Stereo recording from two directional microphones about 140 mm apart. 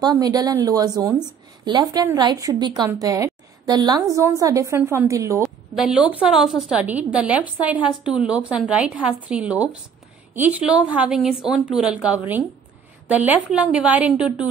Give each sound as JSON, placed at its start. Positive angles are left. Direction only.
{"t": 0.0, "sound": "a woman's voice", "side_deg": -25}
{"t": 5.8, "sound": "a woman's voice", "side_deg": -5}